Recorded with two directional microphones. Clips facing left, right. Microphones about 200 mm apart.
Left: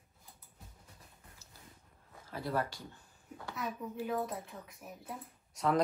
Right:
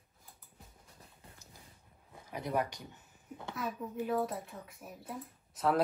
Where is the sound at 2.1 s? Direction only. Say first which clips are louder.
Right 1 dB; 15° right (ahead or behind).